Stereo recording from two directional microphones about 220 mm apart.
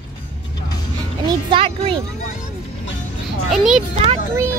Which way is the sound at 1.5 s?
25° right (ahead or behind).